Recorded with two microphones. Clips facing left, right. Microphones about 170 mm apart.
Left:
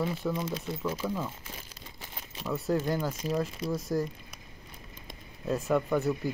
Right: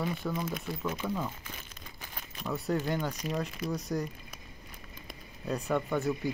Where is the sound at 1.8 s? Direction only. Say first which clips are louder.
Left 1 dB; 25° left (ahead or behind).